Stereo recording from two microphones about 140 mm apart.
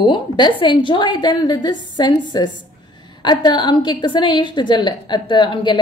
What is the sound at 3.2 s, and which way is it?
A woman's voice, 30° left (ahead or behind).